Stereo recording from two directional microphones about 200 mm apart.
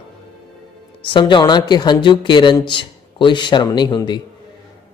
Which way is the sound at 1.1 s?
25° left (ahead or behind).